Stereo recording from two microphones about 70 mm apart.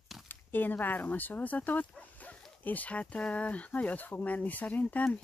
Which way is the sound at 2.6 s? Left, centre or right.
Left.